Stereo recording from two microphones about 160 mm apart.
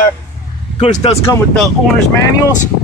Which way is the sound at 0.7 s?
45° left (ahead or behind).